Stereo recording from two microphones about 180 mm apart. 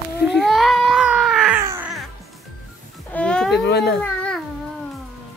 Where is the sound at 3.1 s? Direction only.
5° left (ahead or behind).